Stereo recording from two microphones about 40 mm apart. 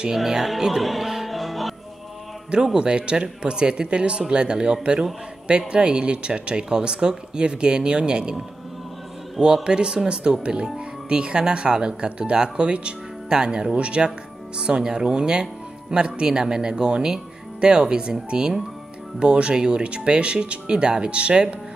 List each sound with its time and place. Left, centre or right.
0.1 s music: centre
2.5 s speech: centre
9.4 s speech: right